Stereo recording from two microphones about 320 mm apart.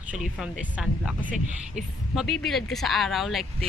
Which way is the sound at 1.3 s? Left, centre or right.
Right.